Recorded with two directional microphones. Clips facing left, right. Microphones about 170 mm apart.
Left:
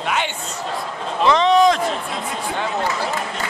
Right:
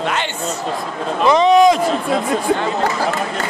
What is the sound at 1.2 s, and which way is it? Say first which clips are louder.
Speech: right 3 dB; 10° right (ahead or behind).